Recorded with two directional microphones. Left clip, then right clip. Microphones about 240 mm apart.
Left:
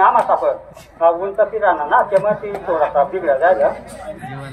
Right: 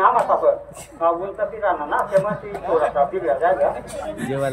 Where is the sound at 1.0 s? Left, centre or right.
Centre.